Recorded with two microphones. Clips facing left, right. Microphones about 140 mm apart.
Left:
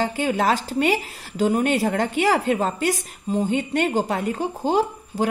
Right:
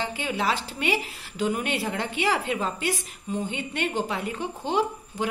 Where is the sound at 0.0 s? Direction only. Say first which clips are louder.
Left 6 dB; 45° left (ahead or behind).